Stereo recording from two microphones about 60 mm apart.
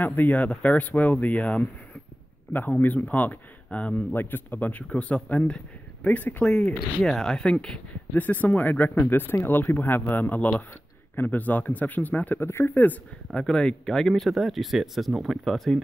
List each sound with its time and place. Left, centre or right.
0.0 s speech: left
2.8 s speech: left
4.1 s speech: left
6.4 s speech: centre
8.1 s speech: left
12.4 s speech: left
12.7 s speech: left
13.3 s speech: centre
13.9 s speech: centre